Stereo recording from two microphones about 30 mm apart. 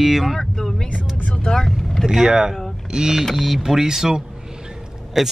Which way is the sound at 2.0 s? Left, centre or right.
Centre.